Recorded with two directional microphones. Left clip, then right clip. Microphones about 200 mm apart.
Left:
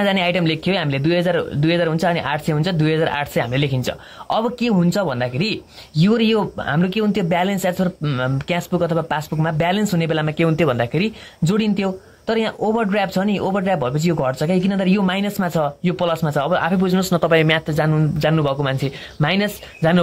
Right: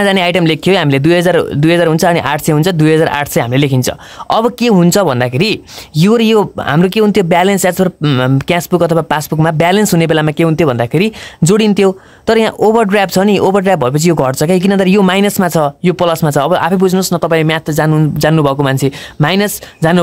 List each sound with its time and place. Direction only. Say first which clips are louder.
0.0 s speech: right 7 dB; 35° right (ahead or behind)